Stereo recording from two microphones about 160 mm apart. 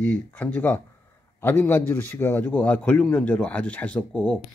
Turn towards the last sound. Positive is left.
turn(degrees=10)  # may be behind; listen again after turning